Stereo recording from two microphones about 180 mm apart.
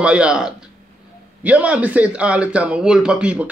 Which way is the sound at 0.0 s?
5° right (ahead or behind).